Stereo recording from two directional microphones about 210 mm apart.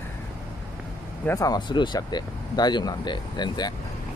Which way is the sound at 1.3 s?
15° left (ahead or behind).